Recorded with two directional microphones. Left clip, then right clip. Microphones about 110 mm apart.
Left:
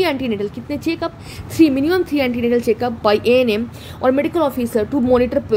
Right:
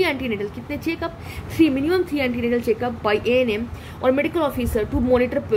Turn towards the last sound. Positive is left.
turn(degrees=40)  # may be behind; listen again after turning